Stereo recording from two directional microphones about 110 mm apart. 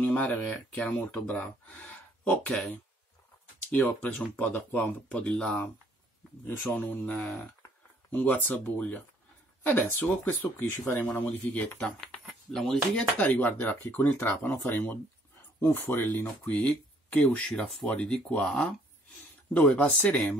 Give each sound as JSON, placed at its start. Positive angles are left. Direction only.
{"t": 0.0, "sound": "speech", "side_deg": 15}
{"t": 3.7, "sound": "speech", "side_deg": 5}
{"t": 6.4, "sound": "speech", "side_deg": 15}
{"t": 11.8, "sound": "speech", "side_deg": 5}
{"t": 12.9, "sound": "speech", "side_deg": 15}